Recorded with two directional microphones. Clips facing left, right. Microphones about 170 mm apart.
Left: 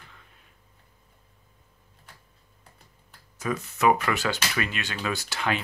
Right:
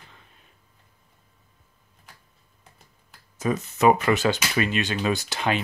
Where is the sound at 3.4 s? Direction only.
20° right (ahead or behind).